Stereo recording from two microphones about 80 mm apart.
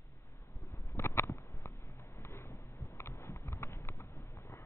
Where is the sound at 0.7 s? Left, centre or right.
Left.